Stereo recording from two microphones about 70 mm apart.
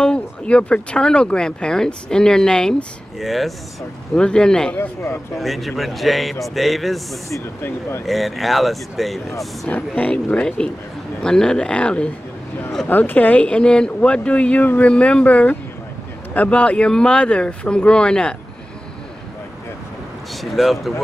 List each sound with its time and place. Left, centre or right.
0.0 s speech: centre
4.1 s speech: centre
4.7 s speech: left
5.4 s speech: centre
9.7 s speech: left
12.8 s speech: left
14.6 s speech: left
14.9 s speech: centre
20.3 s speech: centre